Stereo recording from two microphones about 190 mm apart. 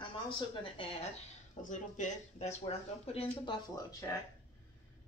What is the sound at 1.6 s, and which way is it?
Speech, 40° left (ahead or behind).